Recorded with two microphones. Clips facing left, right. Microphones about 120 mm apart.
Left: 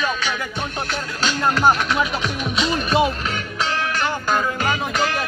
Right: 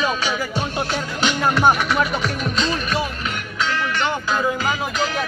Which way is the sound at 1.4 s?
5° right (ahead or behind).